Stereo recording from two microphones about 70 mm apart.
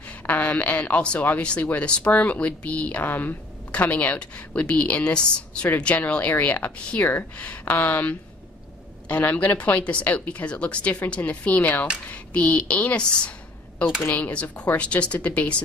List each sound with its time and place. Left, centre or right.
0.3 s speech: left